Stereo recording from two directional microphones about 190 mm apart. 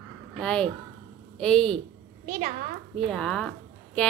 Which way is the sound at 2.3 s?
45° right (ahead or behind).